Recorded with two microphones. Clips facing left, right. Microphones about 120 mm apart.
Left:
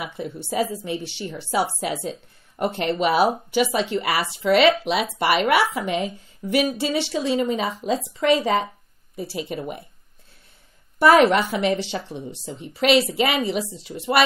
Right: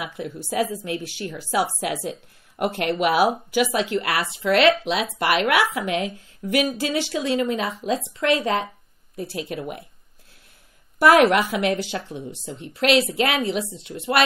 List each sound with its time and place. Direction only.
0.0 s speech: centre (ahead or behind)
11.0 s speech: centre (ahead or behind)